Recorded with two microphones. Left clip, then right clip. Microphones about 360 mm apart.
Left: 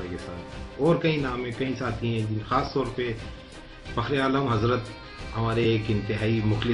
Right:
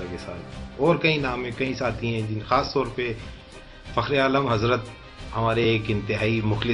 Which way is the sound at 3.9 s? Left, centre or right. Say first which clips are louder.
Right 4 dB; centre.